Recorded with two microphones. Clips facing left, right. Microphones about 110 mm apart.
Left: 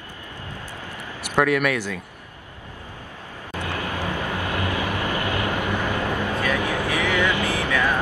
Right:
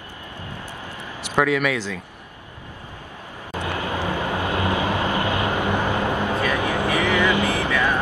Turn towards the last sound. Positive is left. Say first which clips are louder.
# right 1 dB
turn(degrees=-15)  # may be behind; listen again after turning